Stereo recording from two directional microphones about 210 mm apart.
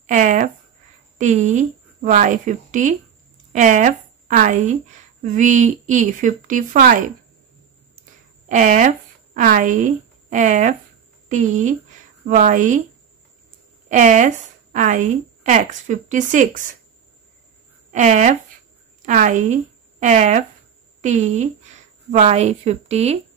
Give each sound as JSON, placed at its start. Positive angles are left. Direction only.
{"t": 0.0, "sound": "a sound", "side_deg": -35}
{"t": 1.1, "sound": "a woman's voice", "side_deg": -35}
{"t": 8.0, "sound": "a sound", "side_deg": -35}
{"t": 11.2, "sound": "a woman's voice", "side_deg": -35}
{"t": 13.8, "sound": "a woman's voice", "side_deg": -35}
{"t": 17.9, "sound": "a woman's voice", "side_deg": -35}